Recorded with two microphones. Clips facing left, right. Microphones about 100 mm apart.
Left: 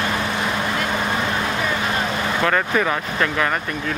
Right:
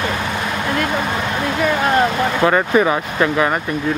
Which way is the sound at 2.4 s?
15° right (ahead or behind).